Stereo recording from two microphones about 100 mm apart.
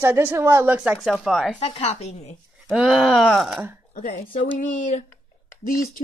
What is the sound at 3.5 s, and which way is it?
Speech, 20° right (ahead or behind).